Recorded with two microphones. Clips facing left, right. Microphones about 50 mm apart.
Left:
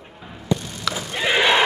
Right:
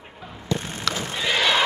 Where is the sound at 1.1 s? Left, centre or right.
Left.